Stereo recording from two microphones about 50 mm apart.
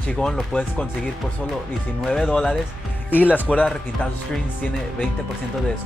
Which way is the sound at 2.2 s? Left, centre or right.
Centre.